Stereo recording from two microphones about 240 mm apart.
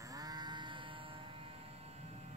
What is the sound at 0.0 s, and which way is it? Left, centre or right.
Sheep, centre.